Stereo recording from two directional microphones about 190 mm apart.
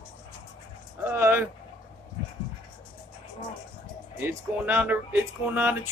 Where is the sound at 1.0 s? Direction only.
10° right (ahead or behind).